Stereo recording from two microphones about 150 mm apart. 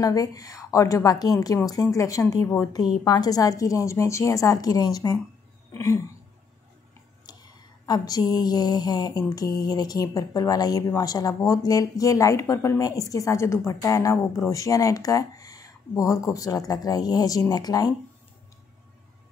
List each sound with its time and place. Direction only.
0.0 s speech: 25° left (ahead or behind)
7.2 s a sound: 30° left (ahead or behind)
9.6 s speech: 25° left (ahead or behind)